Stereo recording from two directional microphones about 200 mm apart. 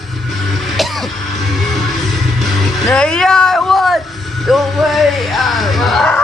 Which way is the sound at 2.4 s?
Centre (ahead or behind).